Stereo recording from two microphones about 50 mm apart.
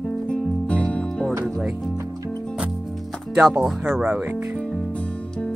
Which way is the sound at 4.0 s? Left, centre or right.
Right.